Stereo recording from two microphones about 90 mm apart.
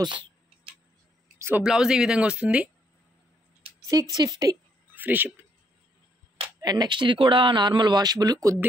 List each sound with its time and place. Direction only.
0.0 s tick-tock: 65° right (ahead or behind)
1.6 s speech: 5° right (ahead or behind)
4.1 s speech: 45° right (ahead or behind)
4.9 s speech: 20° right (ahead or behind)
6.6 s speech: 50° right (ahead or behind)